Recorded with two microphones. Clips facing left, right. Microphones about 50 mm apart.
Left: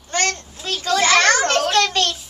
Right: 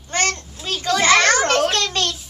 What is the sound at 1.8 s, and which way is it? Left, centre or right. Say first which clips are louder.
Speech: left 4 dB; left.